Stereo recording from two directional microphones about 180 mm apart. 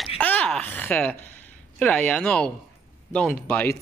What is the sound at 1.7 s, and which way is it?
Speech, 5° left (ahead or behind).